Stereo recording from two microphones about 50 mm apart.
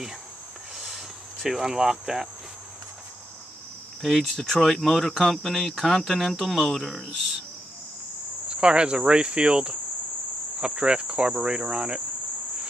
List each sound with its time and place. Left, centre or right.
0.7 s cricket: centre
4.0 s speech: centre
8.5 s cricket: right